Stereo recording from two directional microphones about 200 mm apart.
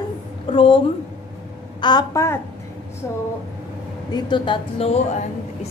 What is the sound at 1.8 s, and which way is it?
Speech, 20° left (ahead or behind).